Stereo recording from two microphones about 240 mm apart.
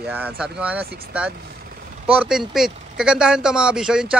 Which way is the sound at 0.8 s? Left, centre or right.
Right.